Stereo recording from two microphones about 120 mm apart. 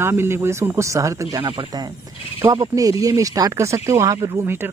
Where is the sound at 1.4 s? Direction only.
40° right (ahead or behind).